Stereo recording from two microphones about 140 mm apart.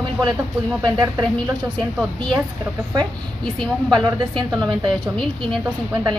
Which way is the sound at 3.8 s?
30° right (ahead or behind).